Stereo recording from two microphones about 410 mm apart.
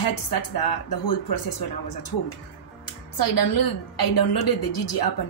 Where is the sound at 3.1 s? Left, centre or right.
Left.